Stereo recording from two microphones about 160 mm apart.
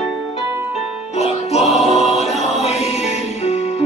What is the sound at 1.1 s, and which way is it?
Music, 40° left (ahead or behind).